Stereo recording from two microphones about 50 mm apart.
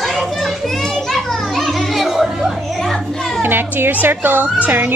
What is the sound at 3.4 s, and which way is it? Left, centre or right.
Music, right.